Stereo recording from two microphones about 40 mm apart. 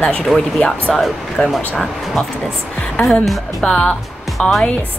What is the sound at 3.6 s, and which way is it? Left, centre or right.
Speech, left.